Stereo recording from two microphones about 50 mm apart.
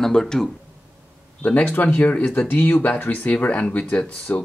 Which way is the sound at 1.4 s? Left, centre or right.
Left.